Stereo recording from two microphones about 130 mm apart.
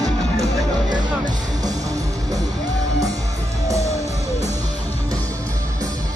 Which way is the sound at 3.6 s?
25° right (ahead or behind).